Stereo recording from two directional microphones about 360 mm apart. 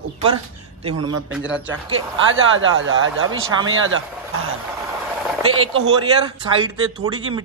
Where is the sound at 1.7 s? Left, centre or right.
Right.